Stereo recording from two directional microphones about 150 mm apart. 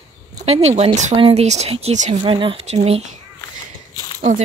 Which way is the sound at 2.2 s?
35° right (ahead or behind).